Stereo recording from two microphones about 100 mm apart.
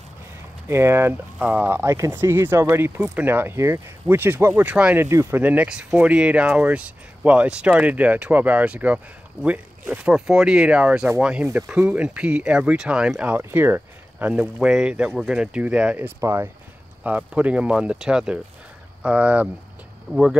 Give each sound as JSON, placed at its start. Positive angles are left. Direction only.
{"t": 0.7, "sound": "speech", "side_deg": -25}
{"t": 4.9, "sound": "speech", "side_deg": -25}
{"t": 5.4, "sound": "speech", "side_deg": -15}
{"t": 13.4, "sound": "speech", "side_deg": -25}
{"t": 16.2, "sound": "speech", "side_deg": -25}
{"t": 17.0, "sound": "speech", "side_deg": -15}